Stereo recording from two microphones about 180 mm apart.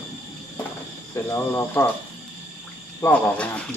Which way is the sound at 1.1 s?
15° left (ahead or behind).